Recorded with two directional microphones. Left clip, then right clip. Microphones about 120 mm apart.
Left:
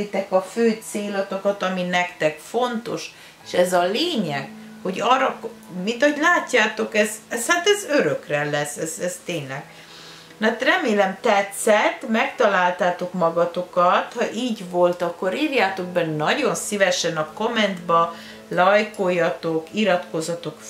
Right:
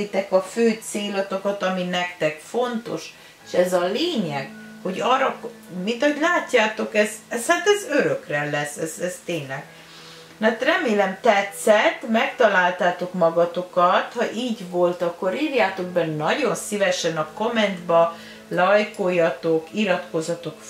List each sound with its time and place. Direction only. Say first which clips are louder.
0.3 s speech: even; 10° left (ahead or behind)
10.4 s speech: even; 25° left (ahead or behind)